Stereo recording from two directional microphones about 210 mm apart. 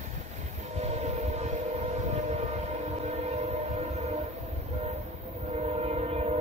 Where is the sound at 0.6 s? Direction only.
30° right (ahead or behind).